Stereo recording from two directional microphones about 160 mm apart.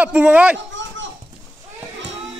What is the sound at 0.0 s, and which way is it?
Speech, 10° right (ahead or behind).